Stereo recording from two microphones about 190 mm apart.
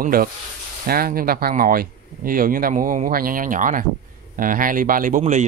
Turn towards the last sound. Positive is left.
turn(degrees=-40)  # may be behind; listen again after turning